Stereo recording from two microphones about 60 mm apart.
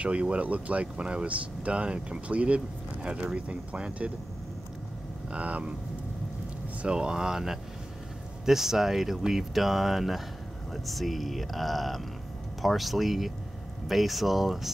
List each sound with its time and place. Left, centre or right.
0.0 s speech: right
5.3 s speech: right
6.8 s speech: centre